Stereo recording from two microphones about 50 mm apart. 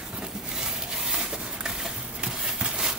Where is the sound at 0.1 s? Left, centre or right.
Centre.